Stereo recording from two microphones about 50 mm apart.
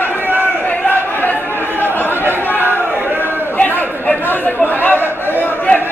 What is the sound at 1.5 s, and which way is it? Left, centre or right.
Chatter, left.